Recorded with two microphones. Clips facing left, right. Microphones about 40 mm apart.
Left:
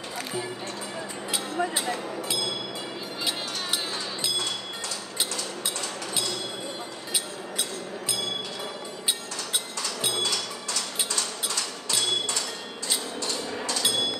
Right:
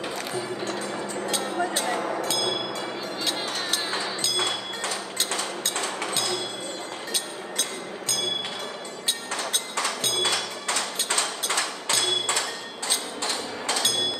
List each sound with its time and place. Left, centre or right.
1.6 s a sound: centre
2.2 s music: centre
10.2 s music: right
11.4 s a sound: right
12.3 s music: right
13.2 s hammer: right